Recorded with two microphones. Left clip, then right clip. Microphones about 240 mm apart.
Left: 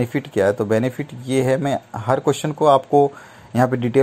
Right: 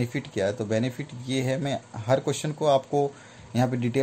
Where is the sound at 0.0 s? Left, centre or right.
Centre.